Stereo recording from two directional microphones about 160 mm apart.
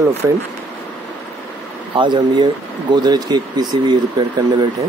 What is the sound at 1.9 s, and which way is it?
Speech, 30° right (ahead or behind).